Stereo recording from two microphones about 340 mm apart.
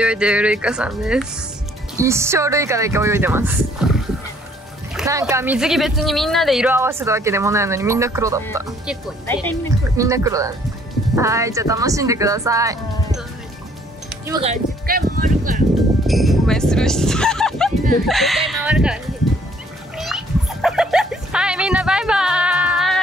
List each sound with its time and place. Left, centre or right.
0.0 s speech: centre
9.9 s speech: centre
14.2 s speech: centre
16.1 s music: centre
18.0 s speech: centre
20.0 s cat: centre